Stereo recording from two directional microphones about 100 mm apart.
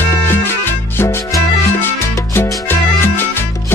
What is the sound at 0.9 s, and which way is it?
Music, 35° left (ahead or behind).